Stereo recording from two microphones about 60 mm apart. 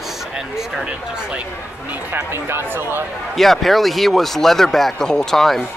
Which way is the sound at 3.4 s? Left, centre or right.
Centre.